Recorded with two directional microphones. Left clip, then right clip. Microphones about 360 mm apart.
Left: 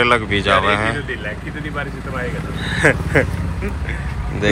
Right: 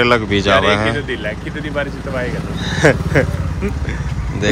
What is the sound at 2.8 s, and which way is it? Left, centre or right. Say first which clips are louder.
Speech: right 2 dB; centre.